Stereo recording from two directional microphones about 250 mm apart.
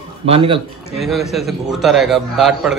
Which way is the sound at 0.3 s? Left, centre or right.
Right.